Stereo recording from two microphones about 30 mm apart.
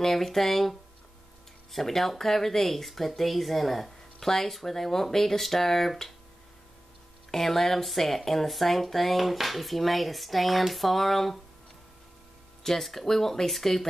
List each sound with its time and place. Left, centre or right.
0.0 s speech: centre
7.2 s speech: centre
12.6 s speech: centre